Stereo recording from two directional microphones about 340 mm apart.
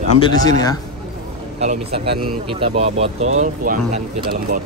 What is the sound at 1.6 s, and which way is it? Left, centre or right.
Speech, centre.